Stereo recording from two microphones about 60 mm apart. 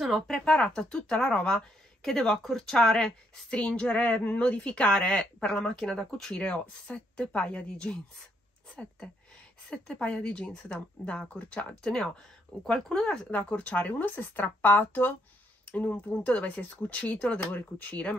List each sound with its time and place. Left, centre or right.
0.0 s speech: centre
0.5 s a woman's voice: centre
9.7 s speech: centre
12.6 s speech: centre